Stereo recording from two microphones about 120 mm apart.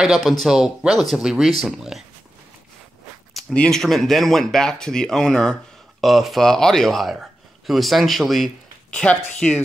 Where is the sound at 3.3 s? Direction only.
5° left (ahead or behind).